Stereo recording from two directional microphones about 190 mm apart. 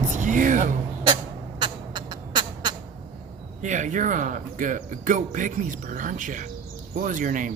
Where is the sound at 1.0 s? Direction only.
25° right (ahead or behind).